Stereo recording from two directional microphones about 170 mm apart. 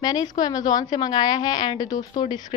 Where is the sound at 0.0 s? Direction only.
20° left (ahead or behind).